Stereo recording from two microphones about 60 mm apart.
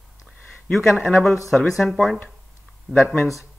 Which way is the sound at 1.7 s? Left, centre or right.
Centre.